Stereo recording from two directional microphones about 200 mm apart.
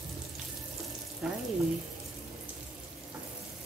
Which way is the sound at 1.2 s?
5° right (ahead or behind).